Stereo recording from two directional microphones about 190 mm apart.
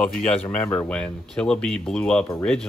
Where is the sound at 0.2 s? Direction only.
5° left (ahead or behind).